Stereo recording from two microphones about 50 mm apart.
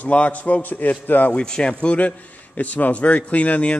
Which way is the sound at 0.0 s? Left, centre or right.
Left.